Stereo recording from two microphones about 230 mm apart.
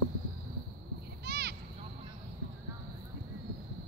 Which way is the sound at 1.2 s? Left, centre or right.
Right.